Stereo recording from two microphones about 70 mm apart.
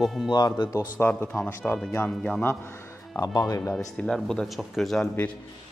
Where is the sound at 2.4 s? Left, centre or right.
Left.